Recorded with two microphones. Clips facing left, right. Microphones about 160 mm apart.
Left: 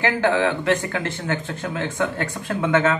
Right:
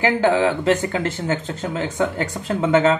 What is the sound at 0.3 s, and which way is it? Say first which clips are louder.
Speech: right 2 dB; 20° right (ahead or behind).